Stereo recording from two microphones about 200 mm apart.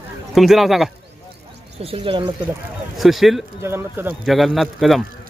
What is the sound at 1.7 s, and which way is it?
Speech, 30° right (ahead or behind).